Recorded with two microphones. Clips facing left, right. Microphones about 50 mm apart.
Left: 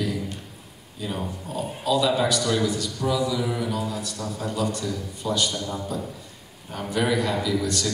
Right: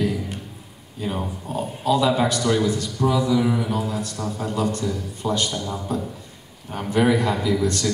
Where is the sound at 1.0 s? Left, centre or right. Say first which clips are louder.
Right 3 dB; right.